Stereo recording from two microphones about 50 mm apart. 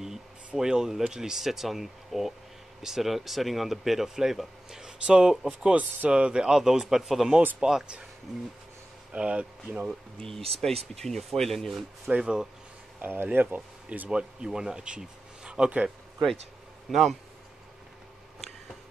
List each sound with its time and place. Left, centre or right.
0.6 s speech: centre
5.0 s speech: right; by 7.3 s centre
7.6 s speech: centre
9.1 s speech: right
10.1 s speech: centre
12.2 s speech: centre
13.0 s speech: right
14.0 s speech: centre
16.9 s speech: centre